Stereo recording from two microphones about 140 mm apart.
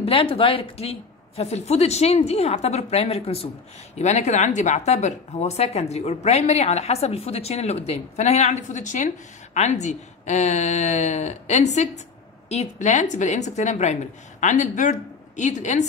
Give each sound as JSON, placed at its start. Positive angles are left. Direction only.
{"t": 0.0, "sound": "a woman's voice", "side_deg": 40}